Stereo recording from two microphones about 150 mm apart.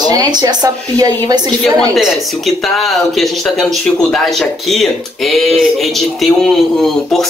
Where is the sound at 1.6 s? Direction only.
Centre (ahead or behind).